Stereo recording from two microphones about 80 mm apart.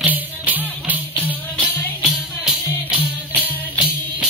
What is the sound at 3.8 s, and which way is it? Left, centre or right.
Music, centre.